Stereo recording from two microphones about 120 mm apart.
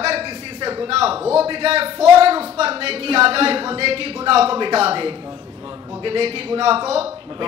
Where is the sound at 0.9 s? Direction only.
55° right (ahead or behind).